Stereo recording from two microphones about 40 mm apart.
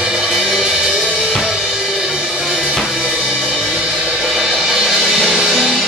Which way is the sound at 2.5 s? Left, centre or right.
Right.